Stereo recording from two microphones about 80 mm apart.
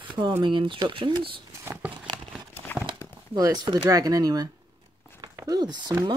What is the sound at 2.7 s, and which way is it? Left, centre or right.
Horse, left.